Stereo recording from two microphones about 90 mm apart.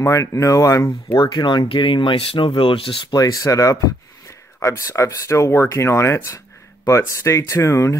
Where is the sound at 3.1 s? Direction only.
45° left (ahead or behind).